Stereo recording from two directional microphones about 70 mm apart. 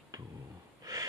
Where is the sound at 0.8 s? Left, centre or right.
Right.